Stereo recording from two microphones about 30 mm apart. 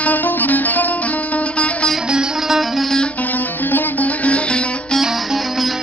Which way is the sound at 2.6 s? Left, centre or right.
Centre.